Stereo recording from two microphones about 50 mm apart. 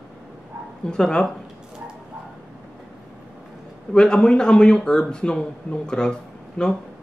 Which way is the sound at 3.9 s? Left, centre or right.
Centre.